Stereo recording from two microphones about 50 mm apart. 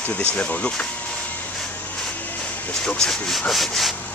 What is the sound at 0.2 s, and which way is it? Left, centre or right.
Speech, left.